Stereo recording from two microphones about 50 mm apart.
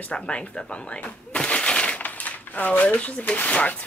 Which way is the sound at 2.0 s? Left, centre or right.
Left.